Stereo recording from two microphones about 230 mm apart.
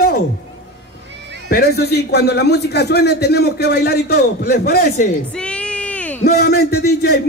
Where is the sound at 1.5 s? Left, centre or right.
Left.